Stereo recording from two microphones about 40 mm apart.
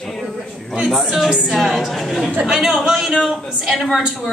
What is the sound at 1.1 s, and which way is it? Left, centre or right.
A woman's voice, centre.